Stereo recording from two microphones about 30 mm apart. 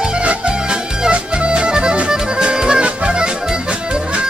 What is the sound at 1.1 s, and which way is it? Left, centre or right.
Music, right.